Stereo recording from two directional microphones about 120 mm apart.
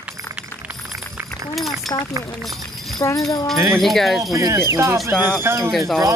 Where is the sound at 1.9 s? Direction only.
30° left (ahead or behind).